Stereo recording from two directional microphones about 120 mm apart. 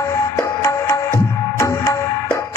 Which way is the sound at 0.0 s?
25° left (ahead or behind).